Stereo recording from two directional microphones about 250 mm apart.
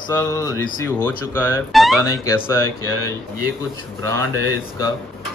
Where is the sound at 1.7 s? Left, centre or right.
Centre.